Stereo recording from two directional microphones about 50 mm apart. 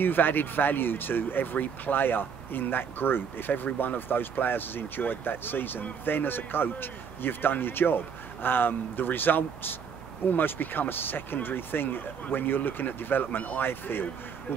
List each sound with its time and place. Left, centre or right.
0.0 s speech: left